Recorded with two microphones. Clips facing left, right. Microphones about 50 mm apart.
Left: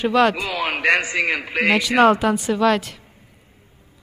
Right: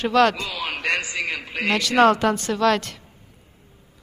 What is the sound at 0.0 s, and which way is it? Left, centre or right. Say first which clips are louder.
A man's voice: left 1 dB; centre.